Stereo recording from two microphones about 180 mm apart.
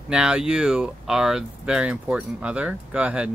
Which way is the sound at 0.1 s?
5° right (ahead or behind).